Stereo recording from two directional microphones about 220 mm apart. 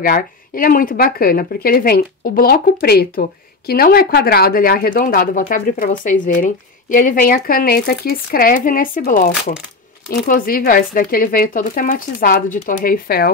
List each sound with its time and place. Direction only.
0.0 s speech: 40° left (ahead or behind)